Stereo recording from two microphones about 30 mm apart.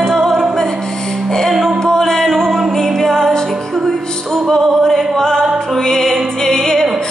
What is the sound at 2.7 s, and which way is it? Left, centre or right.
Music, centre.